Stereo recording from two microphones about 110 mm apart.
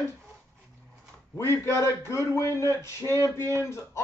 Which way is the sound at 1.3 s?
25° left (ahead or behind).